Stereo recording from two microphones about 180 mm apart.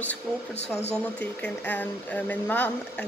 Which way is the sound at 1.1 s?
10° left (ahead or behind).